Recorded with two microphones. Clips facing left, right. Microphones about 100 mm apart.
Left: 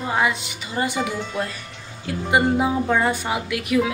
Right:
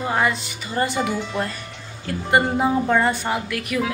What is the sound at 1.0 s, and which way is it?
A woman's voice, centre (ahead or behind).